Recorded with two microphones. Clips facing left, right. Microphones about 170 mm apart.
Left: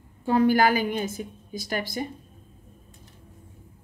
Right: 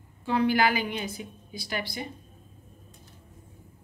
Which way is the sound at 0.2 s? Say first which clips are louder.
Left 4 dB; 45° left (ahead or behind).